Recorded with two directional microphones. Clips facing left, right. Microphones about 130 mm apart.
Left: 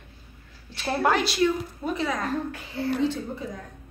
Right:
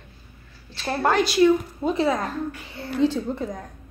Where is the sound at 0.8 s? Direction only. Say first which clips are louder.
Right 2 dB; 5° left (ahead or behind).